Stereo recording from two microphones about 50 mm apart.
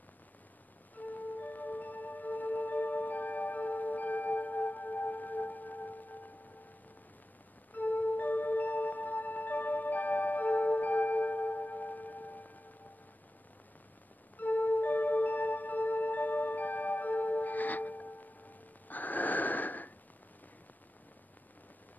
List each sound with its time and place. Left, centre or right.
0.9 s music: left
7.7 s music: left
14.4 s music: left